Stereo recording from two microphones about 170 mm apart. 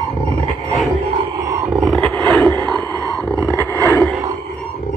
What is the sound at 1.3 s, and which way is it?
Roar, 20° right (ahead or behind).